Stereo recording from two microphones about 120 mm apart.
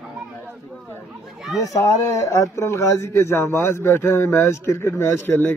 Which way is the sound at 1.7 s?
25° left (ahead or behind).